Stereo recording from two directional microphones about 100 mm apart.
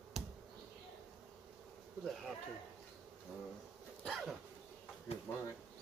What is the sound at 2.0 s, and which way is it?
Bee, centre (ahead or behind).